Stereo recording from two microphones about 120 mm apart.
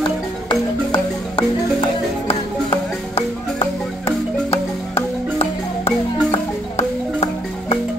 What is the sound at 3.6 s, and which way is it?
Marimba, 50° left (ahead or behind).